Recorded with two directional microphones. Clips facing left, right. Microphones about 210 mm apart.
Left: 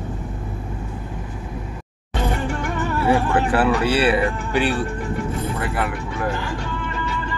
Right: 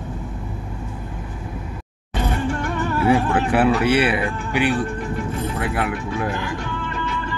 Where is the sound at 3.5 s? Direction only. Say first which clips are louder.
Right 4 dB; 20° right (ahead or behind).